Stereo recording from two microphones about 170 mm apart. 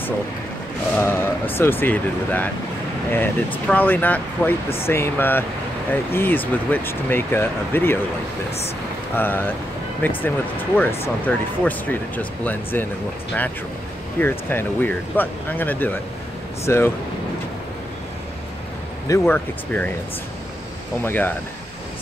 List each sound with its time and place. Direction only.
0.9 s speech: 10° left (ahead or behind)
8.5 s speech: 35° left (ahead or behind)
9.1 s speech: 10° left (ahead or behind)
14.2 s speech: 10° left (ahead or behind)
19.0 s speech: 15° left (ahead or behind)
21.0 s speech: 10° left (ahead or behind)